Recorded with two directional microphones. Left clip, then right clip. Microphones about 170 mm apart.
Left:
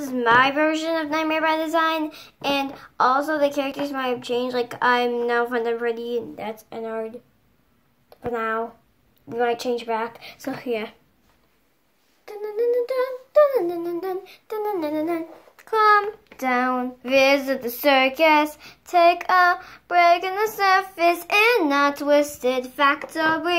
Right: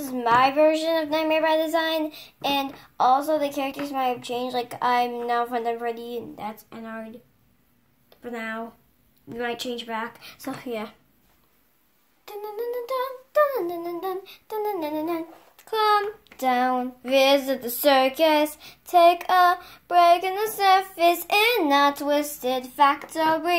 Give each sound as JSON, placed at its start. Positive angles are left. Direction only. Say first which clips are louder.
{"t": 0.2, "sound": "speech", "louder": "left 1 dB", "side_deg": -5}
{"t": 8.3, "sound": "speech", "louder": "left 7 dB", "side_deg": 0}
{"t": 12.5, "sound": "humming", "louder": "left 7 dB", "side_deg": -90}
{"t": 13.0, "sound": "speech", "louder": "left 4 dB", "side_deg": -10}